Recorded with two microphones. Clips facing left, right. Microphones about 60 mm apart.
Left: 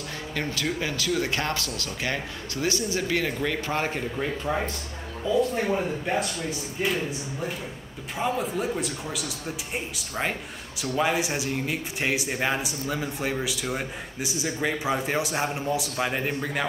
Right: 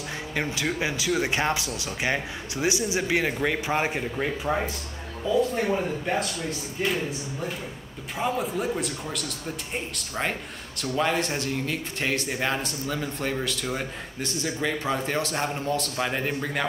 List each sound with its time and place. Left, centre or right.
0.3 s speech: centre
5.2 s a man's voice: centre